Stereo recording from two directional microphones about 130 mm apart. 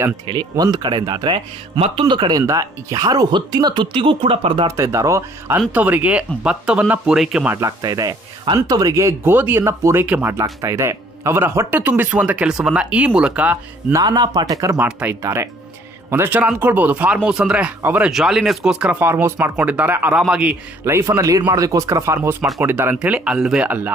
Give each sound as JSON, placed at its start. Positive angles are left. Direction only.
{"t": 0.3, "sound": "speech", "side_deg": -35}
{"t": 4.6, "sound": "speech", "side_deg": -25}
{"t": 5.7, "sound": "a man's voice", "side_deg": -15}
{"t": 7.5, "sound": "a man's voice", "side_deg": -25}
{"t": 13.9, "sound": "speech", "side_deg": -30}
{"t": 14.8, "sound": "a man's voice", "side_deg": -10}
{"t": 20.8, "sound": "a man's voice", "side_deg": -20}